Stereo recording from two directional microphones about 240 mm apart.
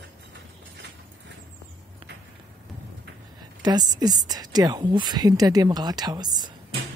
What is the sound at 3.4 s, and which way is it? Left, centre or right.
Speech, centre.